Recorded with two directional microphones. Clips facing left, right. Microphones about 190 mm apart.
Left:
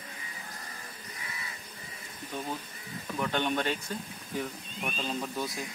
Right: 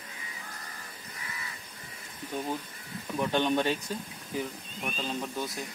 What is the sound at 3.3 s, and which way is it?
Speech, 15° right (ahead or behind).